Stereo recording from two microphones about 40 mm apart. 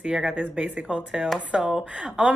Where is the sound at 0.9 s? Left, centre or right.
Right.